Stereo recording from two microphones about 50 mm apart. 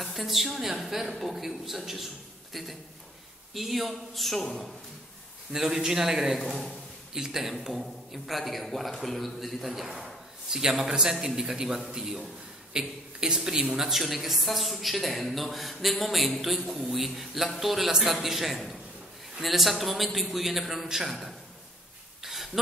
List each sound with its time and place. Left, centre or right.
0.0 s a woman's voice: centre
5.5 s a man's voice: centre
22.2 s a sound: centre